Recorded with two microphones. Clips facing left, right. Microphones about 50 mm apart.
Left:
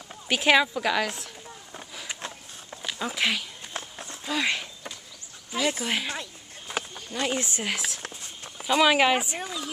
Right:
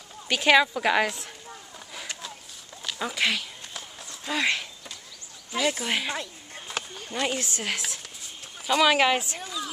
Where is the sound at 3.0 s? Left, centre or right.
Centre.